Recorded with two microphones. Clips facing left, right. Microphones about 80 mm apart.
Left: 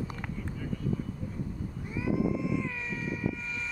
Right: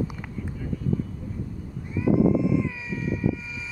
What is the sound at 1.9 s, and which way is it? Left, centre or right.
Vehicle, centre.